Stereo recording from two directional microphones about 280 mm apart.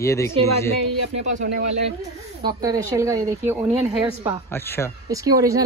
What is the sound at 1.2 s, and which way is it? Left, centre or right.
Speech, right.